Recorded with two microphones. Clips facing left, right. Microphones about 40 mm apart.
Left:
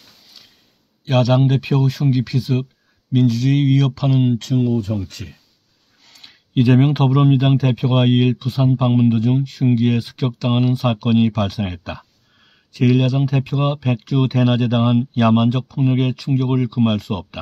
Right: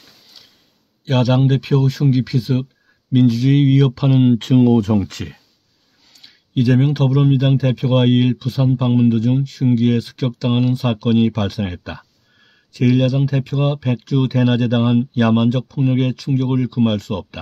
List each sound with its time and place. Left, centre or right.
1.2 s speech: centre
4.6 s speech: right
6.0 s a sound: left
6.5 s speech: left; by 17.4 s centre